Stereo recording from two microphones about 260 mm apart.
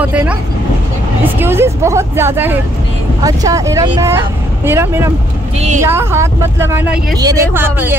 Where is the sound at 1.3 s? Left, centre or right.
Centre.